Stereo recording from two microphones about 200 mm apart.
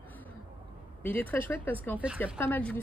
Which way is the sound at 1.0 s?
10° left (ahead or behind).